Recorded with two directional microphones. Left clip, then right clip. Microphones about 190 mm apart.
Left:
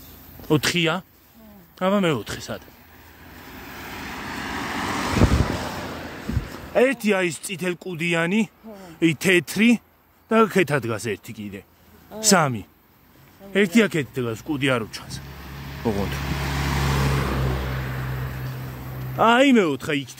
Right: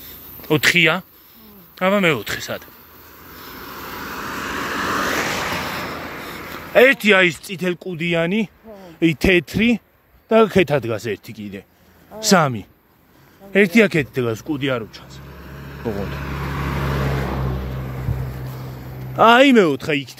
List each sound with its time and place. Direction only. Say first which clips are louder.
0.4 s speech: right 6 dB; 25° left (ahead or behind)
3.5 s vehicle: right 4 dB; 40° left (ahead or behind)
5.6 s a sound: right 5 dB; 25° left (ahead or behind)
6.5 s speech: right 7 dB; 5° left (ahead or behind); by 14.5 s 15° right (ahead or behind)
14.5 s speech: even; 10° left (ahead or behind)
14.9 s vehicle: left 3 dB; 20° left (ahead or behind)
17.0 s vehicle: right 1 dB; 50° left (ahead or behind)
17.6 s vehicle: left 1 dB; 35° left (ahead or behind)
19.1 s speech: right 5 dB; 10° right (ahead or behind)